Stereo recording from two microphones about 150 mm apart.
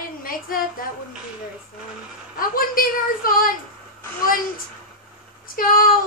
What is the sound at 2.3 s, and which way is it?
A woman's voice, 70° left (ahead or behind).